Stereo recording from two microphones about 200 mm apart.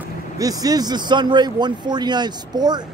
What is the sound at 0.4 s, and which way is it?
Speech, 20° right (ahead or behind).